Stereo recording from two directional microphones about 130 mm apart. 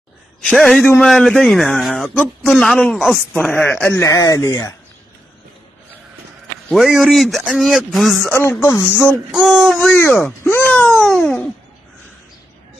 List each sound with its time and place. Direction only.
0.4 s speech: 5° left (ahead or behind)
3.4 s speech: 15° left (ahead or behind)
6.7 s speech: centre (ahead or behind)
8.5 s speech: 20° left (ahead or behind)
9.3 s speech: 5° right (ahead or behind)
9.9 s speech: 10° left (ahead or behind)